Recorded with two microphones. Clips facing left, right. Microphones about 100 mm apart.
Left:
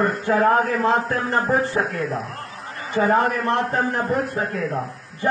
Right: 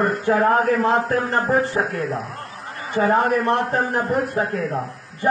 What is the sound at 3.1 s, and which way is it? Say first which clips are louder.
Speech: right 1 dB; 25° right (ahead or behind).